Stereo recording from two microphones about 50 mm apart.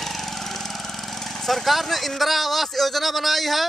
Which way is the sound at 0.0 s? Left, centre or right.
Centre.